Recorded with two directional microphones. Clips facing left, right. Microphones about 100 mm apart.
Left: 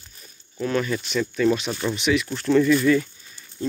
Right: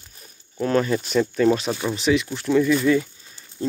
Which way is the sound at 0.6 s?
35° right (ahead or behind).